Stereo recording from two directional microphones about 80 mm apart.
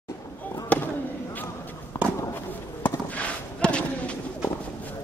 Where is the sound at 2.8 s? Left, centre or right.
Centre.